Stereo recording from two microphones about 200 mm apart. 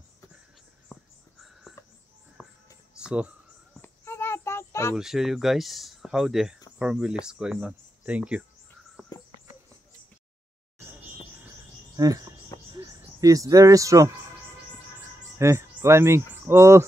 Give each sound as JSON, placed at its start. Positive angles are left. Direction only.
{"t": 0.9, "sound": "a sound", "side_deg": 10}
{"t": 2.4, "sound": "music", "side_deg": 10}
{"t": 3.0, "sound": "speech", "side_deg": -5}
{"t": 3.8, "sound": "child singing", "side_deg": 10}
{"t": 4.9, "sound": "speech", "side_deg": 0}
{"t": 12.0, "sound": "speech", "side_deg": -20}
{"t": 15.3, "sound": "speech", "side_deg": -15}